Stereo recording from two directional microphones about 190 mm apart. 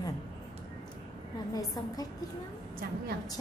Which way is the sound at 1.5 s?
20° left (ahead or behind).